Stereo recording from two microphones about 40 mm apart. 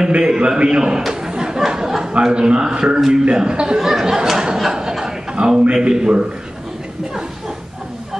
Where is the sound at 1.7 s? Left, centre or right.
Centre.